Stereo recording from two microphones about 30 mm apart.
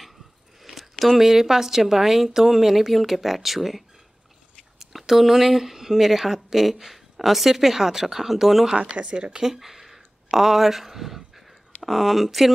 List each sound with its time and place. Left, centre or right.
0.6 s speech: centre
8.7 s speech: right
9.4 s speech: centre